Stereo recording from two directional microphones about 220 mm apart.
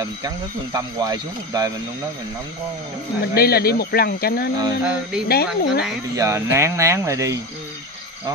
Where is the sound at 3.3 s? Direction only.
45° left (ahead or behind).